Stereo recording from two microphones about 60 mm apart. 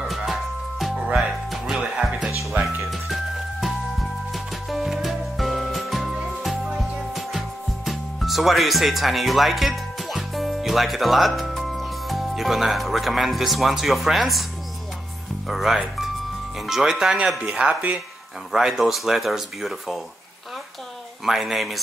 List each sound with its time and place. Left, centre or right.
0.0 s music: centre
2.6 s music: centre
4.3 s music: centre
15.4 s speech: centre
18.5 s speech: centre
21.3 s speech: centre